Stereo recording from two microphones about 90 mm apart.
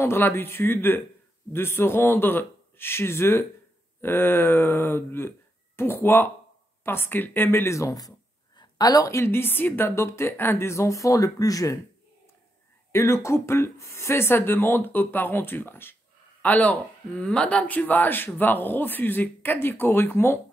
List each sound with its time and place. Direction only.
0.0 s a woman's voice: 25° left (ahead or behind)
12.9 s speech: 30° left (ahead or behind)